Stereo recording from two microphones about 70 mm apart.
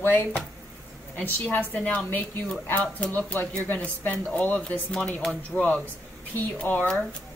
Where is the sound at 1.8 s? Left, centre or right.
Centre.